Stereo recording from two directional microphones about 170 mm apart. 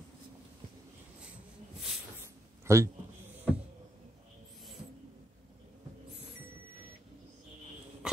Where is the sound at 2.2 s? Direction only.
15° right (ahead or behind).